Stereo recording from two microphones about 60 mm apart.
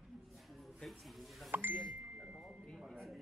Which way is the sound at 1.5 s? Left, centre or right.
Right.